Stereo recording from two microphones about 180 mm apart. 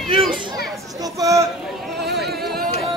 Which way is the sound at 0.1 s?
30° right (ahead or behind).